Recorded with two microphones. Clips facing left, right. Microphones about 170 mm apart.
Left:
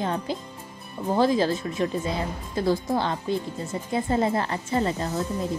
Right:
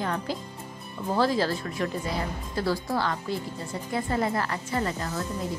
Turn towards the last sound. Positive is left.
turn(degrees=20)  # may be behind; listen again after turning